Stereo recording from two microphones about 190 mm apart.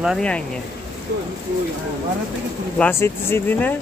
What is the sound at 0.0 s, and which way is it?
Speech, centre (ahead or behind).